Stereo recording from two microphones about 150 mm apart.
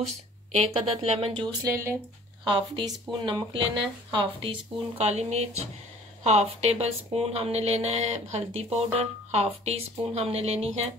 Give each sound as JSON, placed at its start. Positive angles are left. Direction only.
{"t": 0.0, "sound": "a woman's voice", "side_deg": -45}
{"t": 1.6, "sound": "speech", "side_deg": -20}
{"t": 2.4, "sound": "a woman's voice", "side_deg": -30}